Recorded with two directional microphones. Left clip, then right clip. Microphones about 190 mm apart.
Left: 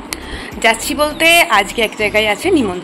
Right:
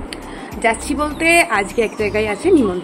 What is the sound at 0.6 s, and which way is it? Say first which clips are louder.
Speech: left 4 dB; centre (ahead or behind).